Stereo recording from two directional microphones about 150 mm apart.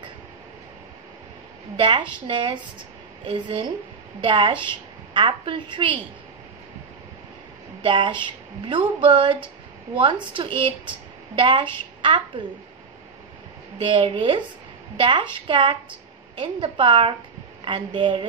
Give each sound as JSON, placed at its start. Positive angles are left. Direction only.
{"t": 1.8, "sound": "a woman's voice", "side_deg": -35}
{"t": 7.8, "sound": "a woman's voice", "side_deg": -35}
{"t": 13.7, "sound": "a woman's voice", "side_deg": -35}